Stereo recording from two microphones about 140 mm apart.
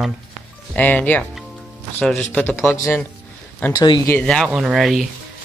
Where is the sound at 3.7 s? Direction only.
30° left (ahead or behind).